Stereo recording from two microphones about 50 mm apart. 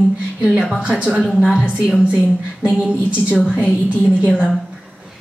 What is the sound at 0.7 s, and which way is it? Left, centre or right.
A woman's voice, right.